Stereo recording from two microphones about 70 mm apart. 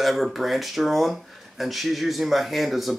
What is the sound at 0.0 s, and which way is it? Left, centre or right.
Speech, centre.